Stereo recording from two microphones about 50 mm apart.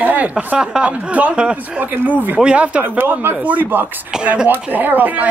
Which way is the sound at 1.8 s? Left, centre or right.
Right.